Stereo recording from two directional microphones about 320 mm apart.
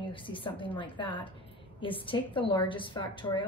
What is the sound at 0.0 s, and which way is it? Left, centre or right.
A woman's voice, centre.